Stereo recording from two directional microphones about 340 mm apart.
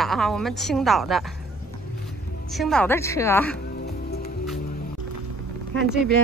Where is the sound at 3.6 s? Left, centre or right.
Left.